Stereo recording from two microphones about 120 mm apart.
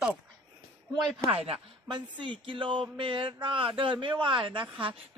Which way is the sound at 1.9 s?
40° right (ahead or behind).